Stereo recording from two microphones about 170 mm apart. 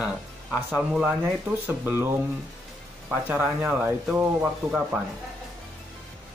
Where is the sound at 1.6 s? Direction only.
10° right (ahead or behind).